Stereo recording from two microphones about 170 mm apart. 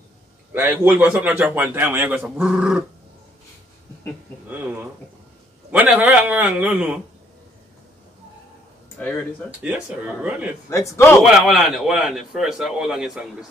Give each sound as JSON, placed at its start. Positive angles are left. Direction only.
{"t": 0.5, "sound": "a man's voice", "side_deg": -10}
{"t": 5.7, "sound": "a man's voice", "side_deg": -10}
{"t": 9.6, "sound": "a man's voice", "side_deg": -10}
{"t": 10.7, "sound": "a man's voice", "side_deg": 15}
{"t": 11.2, "sound": "a man's voice", "side_deg": 0}